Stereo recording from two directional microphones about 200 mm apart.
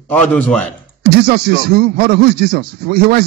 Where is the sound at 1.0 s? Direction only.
50° right (ahead or behind).